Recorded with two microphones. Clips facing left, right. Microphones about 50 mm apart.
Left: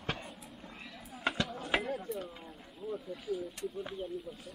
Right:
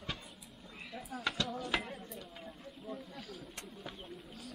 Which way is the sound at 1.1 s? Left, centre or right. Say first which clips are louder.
Left 2 dB; centre.